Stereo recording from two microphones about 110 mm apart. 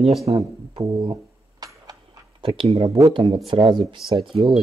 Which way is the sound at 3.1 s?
50° right (ahead or behind).